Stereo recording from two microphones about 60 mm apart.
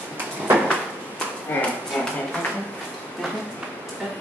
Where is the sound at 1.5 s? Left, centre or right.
Left.